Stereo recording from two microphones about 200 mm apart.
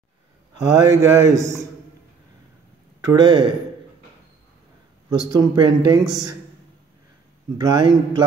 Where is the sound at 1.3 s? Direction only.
15° right (ahead or behind).